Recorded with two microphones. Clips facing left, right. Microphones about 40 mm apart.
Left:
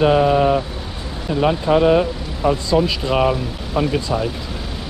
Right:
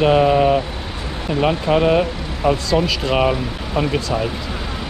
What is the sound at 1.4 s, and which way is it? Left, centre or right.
Speech, right.